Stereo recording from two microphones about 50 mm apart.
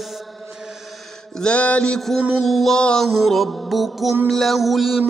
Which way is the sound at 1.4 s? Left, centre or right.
Left.